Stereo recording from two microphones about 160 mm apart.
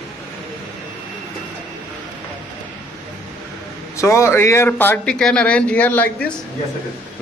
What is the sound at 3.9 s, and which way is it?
A man's voice, 20° left (ahead or behind).